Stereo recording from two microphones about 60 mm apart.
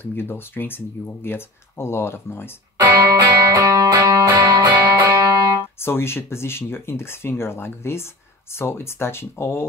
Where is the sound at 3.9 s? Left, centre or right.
Right.